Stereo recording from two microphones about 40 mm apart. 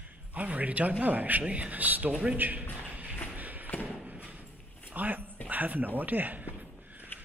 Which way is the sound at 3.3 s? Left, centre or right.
Right.